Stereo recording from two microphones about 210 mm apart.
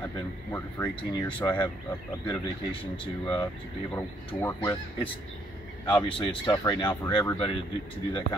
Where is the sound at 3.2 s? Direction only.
20° left (ahead or behind).